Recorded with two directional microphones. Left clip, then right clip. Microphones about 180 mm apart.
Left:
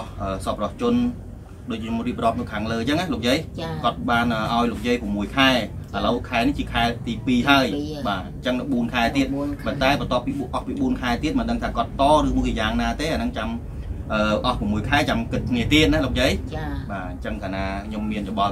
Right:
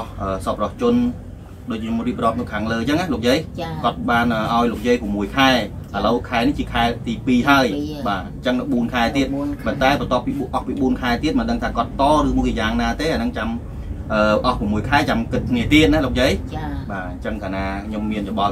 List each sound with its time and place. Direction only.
0.2 s speech: 20° left (ahead or behind)